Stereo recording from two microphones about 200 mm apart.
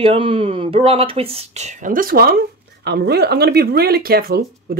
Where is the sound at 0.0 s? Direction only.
25° right (ahead or behind).